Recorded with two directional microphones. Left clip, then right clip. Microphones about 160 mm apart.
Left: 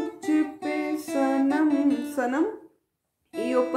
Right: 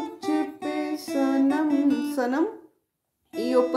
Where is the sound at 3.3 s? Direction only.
35° right (ahead or behind).